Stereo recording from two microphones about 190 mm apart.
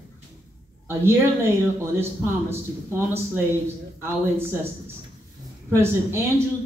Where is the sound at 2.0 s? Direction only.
15° right (ahead or behind).